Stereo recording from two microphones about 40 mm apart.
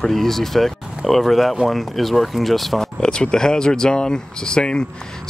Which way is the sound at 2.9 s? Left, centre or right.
Left.